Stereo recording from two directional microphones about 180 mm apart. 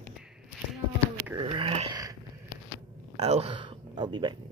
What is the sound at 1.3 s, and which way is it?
Dog, 30° right (ahead or behind).